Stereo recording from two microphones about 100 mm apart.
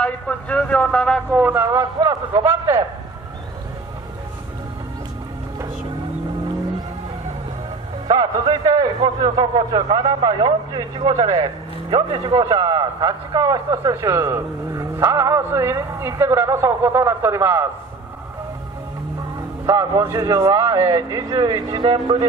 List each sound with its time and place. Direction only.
0.0 s a man's voice: 15° left (ahead or behind)
1.3 s a man's voice: 20° right (ahead or behind)
1.7 s a man's voice: 40° right (ahead or behind)
8.6 s a man's voice: 35° right (ahead or behind)
10.2 s speech: 65° right (ahead or behind)
12.2 s a man's voice: 45° right (ahead or behind)
19.6 s a man's voice: 35° right (ahead or behind)